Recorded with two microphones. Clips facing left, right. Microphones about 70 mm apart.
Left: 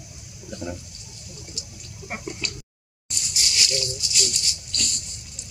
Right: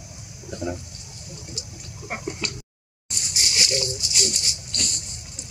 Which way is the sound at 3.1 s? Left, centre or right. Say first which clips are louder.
Right 1 dB; right.